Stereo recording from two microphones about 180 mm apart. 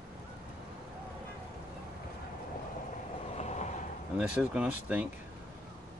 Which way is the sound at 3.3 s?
40° left (ahead or behind).